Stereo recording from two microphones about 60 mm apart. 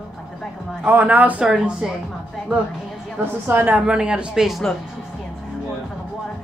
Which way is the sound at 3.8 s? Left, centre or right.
Centre.